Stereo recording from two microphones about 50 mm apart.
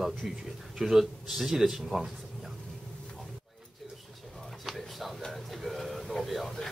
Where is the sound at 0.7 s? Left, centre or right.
Centre.